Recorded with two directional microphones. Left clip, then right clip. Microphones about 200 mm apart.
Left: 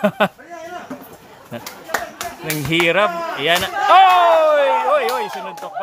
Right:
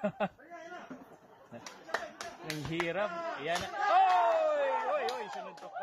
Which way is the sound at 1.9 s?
45° right (ahead or behind).